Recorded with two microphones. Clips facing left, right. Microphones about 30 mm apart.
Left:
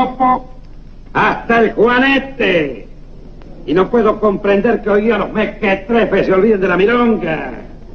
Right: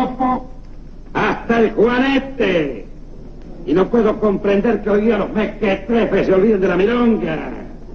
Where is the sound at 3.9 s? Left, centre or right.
Centre.